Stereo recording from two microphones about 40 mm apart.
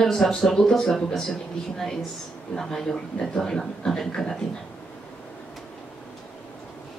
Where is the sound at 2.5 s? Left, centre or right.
Centre.